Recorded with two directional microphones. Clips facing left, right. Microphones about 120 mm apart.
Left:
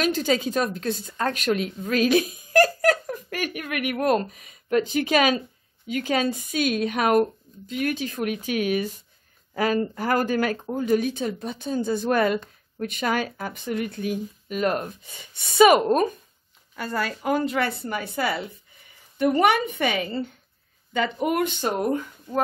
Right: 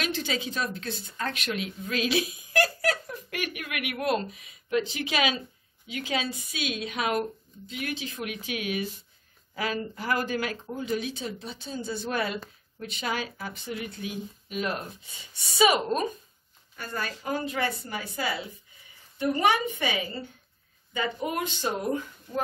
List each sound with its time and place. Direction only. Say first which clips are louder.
0.0 s a woman's voice: left 8 dB; 45° left (ahead or behind)
16.7 s a woman's voice: left 6 dB; 90° left; by 17.7 s 70° left (ahead or behind)
17.8 s speech: left 5 dB; 60° left (ahead or behind)